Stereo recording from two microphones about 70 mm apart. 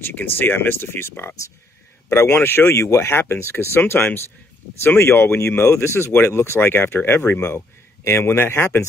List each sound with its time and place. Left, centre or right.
0.0 s speech: left